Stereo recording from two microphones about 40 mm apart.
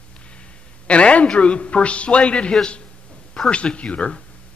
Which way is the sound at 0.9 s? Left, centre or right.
Left.